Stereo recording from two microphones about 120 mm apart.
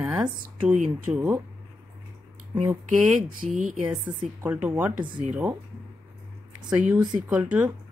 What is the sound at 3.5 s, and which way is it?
Speech, 90° right.